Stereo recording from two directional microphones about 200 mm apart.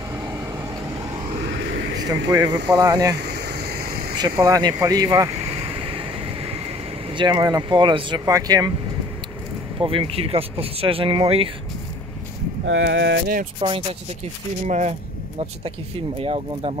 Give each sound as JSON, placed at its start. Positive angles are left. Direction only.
{"t": 1.3, "sound": "a sound", "side_deg": -30}
{"t": 2.0, "sound": "speech", "side_deg": -20}
{"t": 3.3, "sound": "a sound", "side_deg": -50}
{"t": 4.1, "sound": "speech", "side_deg": -20}
{"t": 5.4, "sound": "vehicle", "side_deg": -30}
{"t": 7.1, "sound": "speech", "side_deg": -25}
{"t": 9.8, "sound": "speech", "side_deg": -25}
{"t": 12.6, "sound": "speech", "side_deg": -65}
{"t": 13.6, "sound": "speech", "side_deg": -25}
{"t": 14.7, "sound": "speech", "side_deg": -35}
{"t": 16.2, "sound": "speech", "side_deg": -30}